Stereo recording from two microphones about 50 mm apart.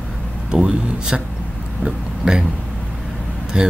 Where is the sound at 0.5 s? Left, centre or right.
Centre.